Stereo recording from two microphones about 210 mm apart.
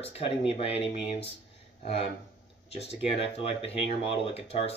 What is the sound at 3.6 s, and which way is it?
Speech, 25° left (ahead or behind).